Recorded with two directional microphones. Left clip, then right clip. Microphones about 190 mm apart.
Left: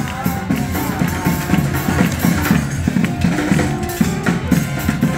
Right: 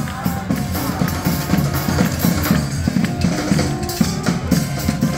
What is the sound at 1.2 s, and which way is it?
Music, 55° right (ahead or behind).